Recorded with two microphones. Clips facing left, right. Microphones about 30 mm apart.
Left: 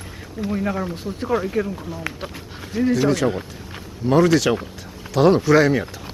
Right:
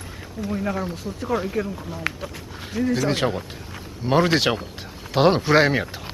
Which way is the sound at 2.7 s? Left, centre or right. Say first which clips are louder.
Left 3 dB; centre.